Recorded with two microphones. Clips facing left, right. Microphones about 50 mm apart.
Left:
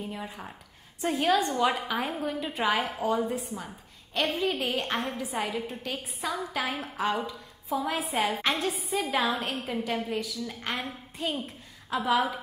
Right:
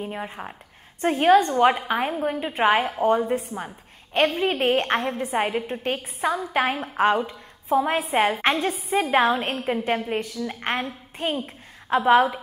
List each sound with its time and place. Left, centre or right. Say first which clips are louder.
0.0 s a woman's voice: right 6 dB; right